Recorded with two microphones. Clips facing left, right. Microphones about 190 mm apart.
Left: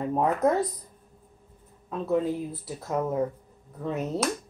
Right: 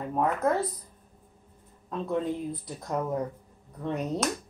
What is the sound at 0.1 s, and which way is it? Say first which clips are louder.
Speech: left 2 dB; 15° left (ahead or behind).